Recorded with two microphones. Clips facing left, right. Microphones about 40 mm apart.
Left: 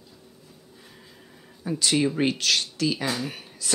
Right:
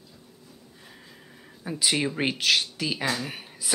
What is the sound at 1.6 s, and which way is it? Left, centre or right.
Speech, centre.